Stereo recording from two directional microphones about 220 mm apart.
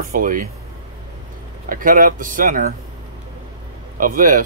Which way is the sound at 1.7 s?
40° right (ahead or behind).